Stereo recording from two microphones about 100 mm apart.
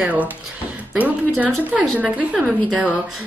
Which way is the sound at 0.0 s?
15° right (ahead or behind).